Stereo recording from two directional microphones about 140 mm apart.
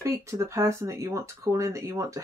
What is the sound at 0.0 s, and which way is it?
Speech, 20° right (ahead or behind).